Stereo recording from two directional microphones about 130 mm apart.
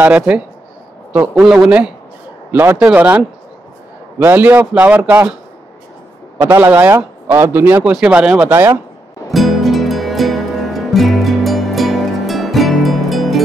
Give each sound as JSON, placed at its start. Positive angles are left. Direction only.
{"t": 0.0, "sound": "a man's voice", "side_deg": -10}
{"t": 6.3, "sound": "a man's voice", "side_deg": -20}
{"t": 9.3, "sound": "music", "side_deg": 0}